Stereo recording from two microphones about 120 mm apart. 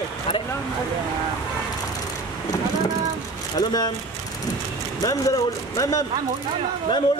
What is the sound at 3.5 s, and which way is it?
Speech, 35° left (ahead or behind).